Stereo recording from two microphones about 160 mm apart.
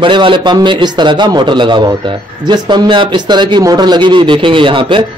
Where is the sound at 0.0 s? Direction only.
30° right (ahead or behind).